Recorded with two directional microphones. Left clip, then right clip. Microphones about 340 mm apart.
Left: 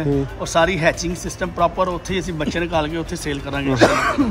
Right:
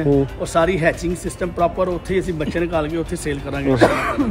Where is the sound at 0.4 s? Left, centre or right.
Centre.